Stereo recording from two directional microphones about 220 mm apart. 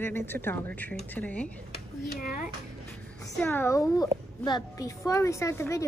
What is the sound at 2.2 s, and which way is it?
Speech, 40° left (ahead or behind).